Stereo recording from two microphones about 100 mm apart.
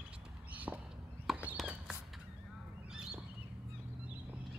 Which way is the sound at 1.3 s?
Centre (ahead or behind).